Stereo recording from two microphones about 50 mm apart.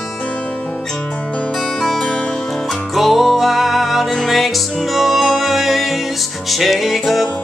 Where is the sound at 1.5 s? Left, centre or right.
Centre.